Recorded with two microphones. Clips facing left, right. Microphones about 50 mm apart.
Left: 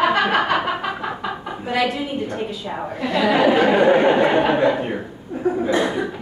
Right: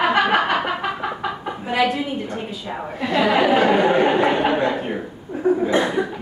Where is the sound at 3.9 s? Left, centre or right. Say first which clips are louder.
Left 2 dB; centre.